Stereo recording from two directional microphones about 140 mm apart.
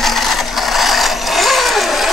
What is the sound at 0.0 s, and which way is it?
Mechanisms, centre (ahead or behind).